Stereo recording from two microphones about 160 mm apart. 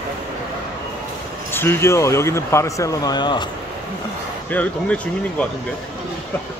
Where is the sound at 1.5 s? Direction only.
15° left (ahead or behind).